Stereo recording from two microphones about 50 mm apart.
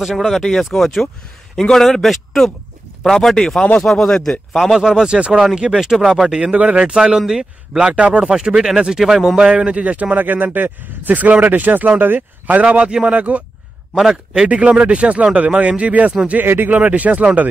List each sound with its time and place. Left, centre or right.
0.3 s speech: centre
4.7 s a man's voice: centre
6.2 s a man's voice: centre
7.9 s speech: right
8.2 s a man's voice: centre
9.5 s speech: centre
16.4 s speech: right
16.7 s speech: right